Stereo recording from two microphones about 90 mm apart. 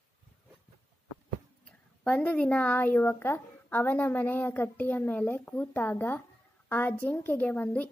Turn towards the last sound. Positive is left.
turn(degrees=20)  # may be behind; listen again after turning